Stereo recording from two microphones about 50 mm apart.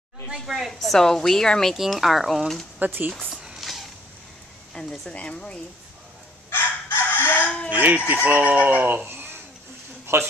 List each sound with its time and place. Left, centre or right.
0.3 s a woman's voice: centre
1.8 s speech: centre
2.8 s speech: right
3.3 s a sound: centre
4.8 s speech: centre
6.5 s crowing: left
7.3 s chicken: left
7.7 s speech: right
10.1 s a man's voice: right